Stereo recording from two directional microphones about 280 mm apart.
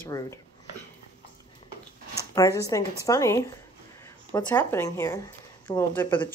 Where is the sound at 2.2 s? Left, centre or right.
Centre.